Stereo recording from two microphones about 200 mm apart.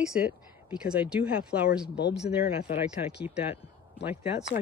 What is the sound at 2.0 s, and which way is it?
Speech, 60° left (ahead or behind).